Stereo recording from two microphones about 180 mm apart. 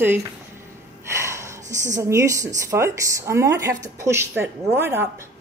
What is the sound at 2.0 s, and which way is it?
Speech, 15° right (ahead or behind).